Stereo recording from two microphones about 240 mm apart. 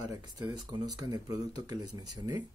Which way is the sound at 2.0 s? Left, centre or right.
Right.